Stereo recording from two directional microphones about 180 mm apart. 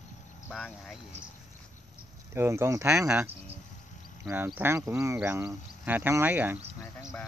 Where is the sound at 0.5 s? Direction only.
Centre (ahead or behind).